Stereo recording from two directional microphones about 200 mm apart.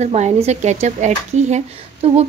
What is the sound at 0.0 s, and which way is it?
Speech, 35° right (ahead or behind).